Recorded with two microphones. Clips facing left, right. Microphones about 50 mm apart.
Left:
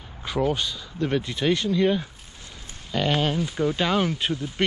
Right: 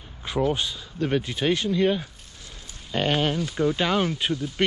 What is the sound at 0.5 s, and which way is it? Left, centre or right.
Speech, centre.